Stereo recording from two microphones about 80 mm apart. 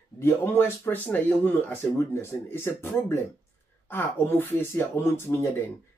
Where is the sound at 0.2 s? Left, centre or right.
Left.